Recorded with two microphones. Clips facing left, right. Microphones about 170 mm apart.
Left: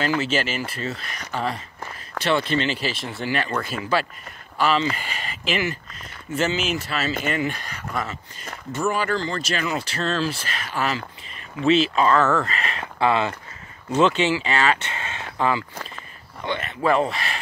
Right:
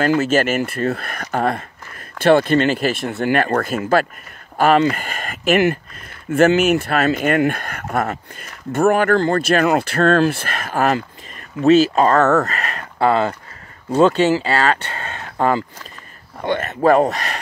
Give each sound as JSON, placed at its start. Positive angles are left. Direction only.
{"t": 0.0, "sound": "speech", "side_deg": -50}
{"t": 16.3, "sound": "speech", "side_deg": -50}